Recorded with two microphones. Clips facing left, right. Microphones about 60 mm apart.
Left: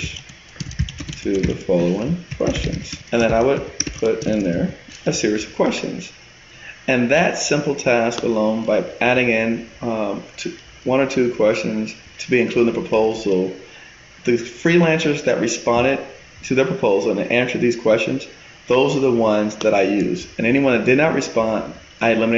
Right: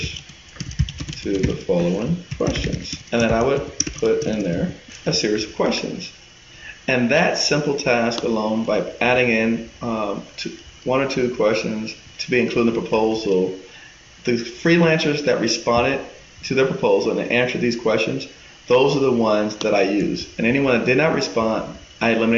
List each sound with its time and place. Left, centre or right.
1.1 s a sound: centre
1.5 s speech: centre
3.8 s a sound: left
4.3 s speech: left
4.6 s speech: centre
6.9 s speech: centre